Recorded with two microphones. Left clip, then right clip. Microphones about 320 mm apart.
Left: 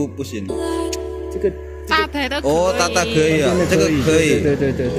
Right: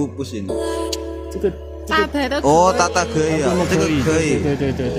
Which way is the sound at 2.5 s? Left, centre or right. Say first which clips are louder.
Right 3 dB; centre.